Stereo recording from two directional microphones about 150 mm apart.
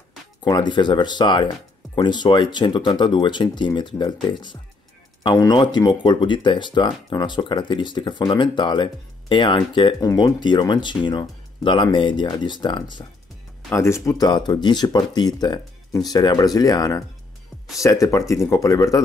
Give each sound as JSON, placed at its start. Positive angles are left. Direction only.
{"t": 0.4, "sound": "speech", "side_deg": 30}
{"t": 13.7, "sound": "speech", "side_deg": 20}